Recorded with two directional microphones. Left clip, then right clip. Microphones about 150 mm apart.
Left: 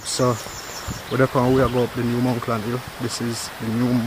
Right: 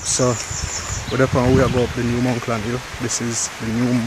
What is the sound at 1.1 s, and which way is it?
Speech, 5° right (ahead or behind).